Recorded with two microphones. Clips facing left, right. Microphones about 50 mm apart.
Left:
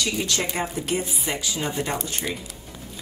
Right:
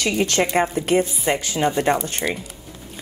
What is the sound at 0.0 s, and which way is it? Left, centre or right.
A woman's voice, right.